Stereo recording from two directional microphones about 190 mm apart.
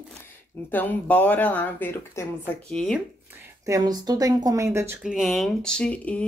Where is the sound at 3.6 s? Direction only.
20° right (ahead or behind).